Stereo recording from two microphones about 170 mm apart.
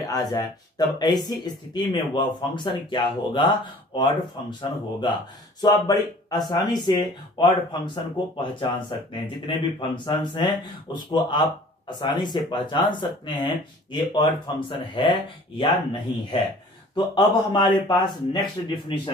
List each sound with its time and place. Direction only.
0.1 s speech: 20° left (ahead or behind)